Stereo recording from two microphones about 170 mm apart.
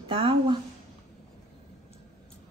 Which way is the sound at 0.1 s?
30° right (ahead or behind).